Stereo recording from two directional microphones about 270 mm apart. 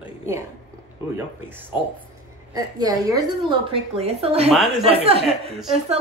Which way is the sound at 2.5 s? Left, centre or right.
Centre.